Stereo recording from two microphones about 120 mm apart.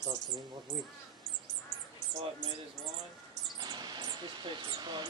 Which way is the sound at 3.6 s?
35° right (ahead or behind).